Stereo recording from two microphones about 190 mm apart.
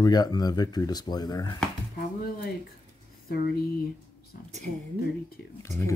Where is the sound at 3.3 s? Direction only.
55° left (ahead or behind).